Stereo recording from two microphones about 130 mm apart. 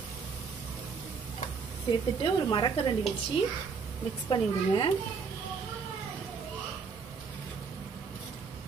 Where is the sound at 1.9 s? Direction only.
35° left (ahead or behind).